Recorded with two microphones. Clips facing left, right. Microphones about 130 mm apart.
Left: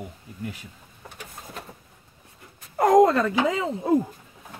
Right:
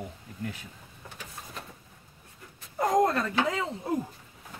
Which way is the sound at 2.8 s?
90° left.